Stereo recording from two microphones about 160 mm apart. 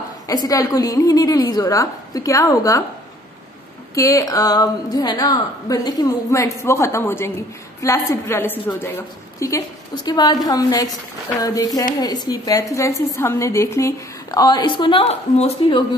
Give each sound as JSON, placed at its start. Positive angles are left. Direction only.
{"t": 0.3, "sound": "a woman's voice", "side_deg": 20}
{"t": 3.9, "sound": "a woman's voice", "side_deg": 20}